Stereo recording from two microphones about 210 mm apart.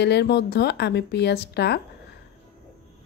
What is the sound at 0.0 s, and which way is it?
A woman's voice, 55° left (ahead or behind).